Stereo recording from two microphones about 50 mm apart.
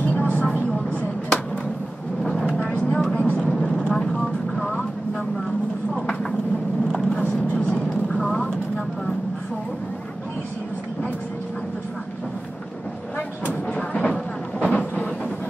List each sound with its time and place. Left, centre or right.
0.0 s vehicle: left
2.6 s vehicle: left
6.9 s vehicle: centre
13.7 s a sound: left